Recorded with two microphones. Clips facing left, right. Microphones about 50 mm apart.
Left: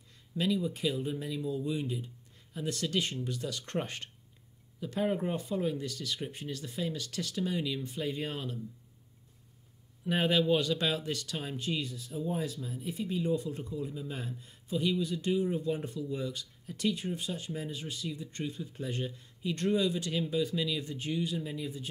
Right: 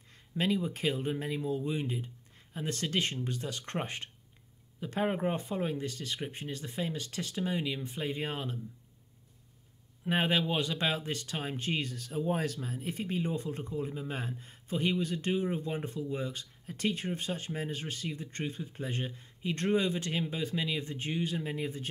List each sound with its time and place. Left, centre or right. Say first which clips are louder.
0.1 s speech: even; right
10.0 s speech: left 2 dB; right